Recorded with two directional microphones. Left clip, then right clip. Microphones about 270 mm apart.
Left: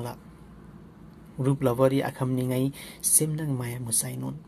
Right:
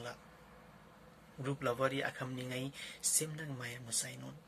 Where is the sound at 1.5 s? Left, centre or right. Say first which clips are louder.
Left 12 dB; left.